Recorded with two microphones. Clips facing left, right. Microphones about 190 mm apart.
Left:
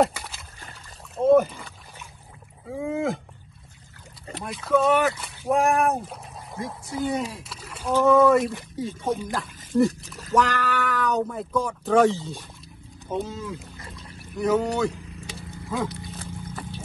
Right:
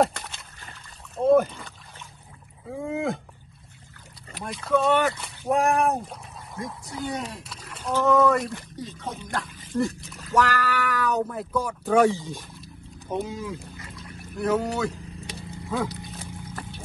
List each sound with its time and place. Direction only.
0.0 s a sound: 5° left (ahead or behind)
2.7 s speech: centre (ahead or behind)
4.5 s speech: centre (ahead or behind)
10.3 s speech: centre (ahead or behind)
13.7 s pour: 30° left (ahead or behind)
14.3 s speech: centre (ahead or behind)
16.0 s wild animals: 15° right (ahead or behind)